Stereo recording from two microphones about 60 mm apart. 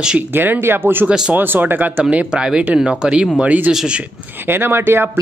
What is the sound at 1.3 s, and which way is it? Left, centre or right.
Speech, right.